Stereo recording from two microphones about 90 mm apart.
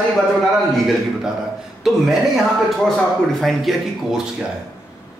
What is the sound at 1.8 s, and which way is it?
Speech, 5° right (ahead or behind).